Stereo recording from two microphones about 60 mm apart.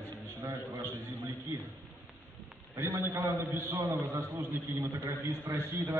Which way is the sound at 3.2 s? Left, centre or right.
Right.